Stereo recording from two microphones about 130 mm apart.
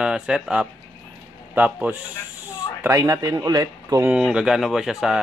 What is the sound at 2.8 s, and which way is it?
Speech, 20° right (ahead or behind).